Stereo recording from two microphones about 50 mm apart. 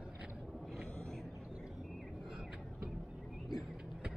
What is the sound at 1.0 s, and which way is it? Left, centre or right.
Vehicle, centre.